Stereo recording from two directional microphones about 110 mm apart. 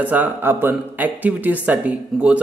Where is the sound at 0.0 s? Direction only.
15° right (ahead or behind).